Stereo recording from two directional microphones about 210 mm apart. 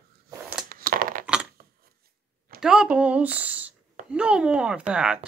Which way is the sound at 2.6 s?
5° right (ahead or behind).